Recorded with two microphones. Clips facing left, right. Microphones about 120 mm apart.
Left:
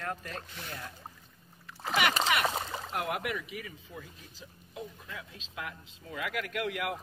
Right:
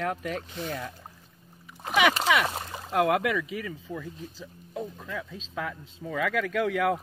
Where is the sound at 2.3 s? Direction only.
90° right.